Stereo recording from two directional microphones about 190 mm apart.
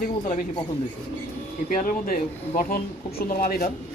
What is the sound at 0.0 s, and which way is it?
Speech, 45° left (ahead or behind).